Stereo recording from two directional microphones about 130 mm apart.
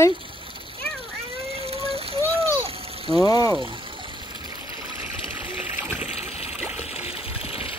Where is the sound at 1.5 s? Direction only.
50° right (ahead or behind).